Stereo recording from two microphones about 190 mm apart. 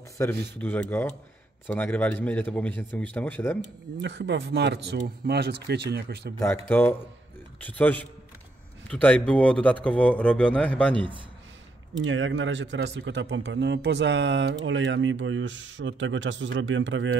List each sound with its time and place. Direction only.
0.2 s speech: 15° left (ahead or behind)
4.0 s speech: 65° right (ahead or behind)
6.7 s speech: 10° left (ahead or behind)
12.0 s speech: 80° right